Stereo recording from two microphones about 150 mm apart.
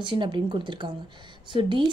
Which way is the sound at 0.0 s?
30° right (ahead or behind).